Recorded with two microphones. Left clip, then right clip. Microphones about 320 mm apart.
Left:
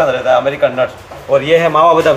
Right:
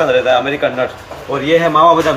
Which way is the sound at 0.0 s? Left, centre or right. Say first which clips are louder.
Even; left.